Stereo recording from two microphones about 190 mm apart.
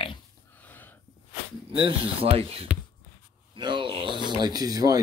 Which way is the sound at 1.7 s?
25° right (ahead or behind).